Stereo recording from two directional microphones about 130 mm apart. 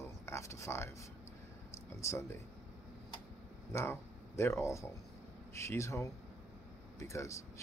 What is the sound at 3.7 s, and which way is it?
Speech, 20° left (ahead or behind).